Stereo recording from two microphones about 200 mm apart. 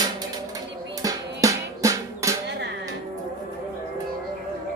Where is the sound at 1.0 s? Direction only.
15° right (ahead or behind).